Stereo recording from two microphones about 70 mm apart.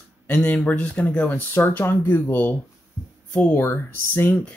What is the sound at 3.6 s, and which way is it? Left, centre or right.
Speech, left.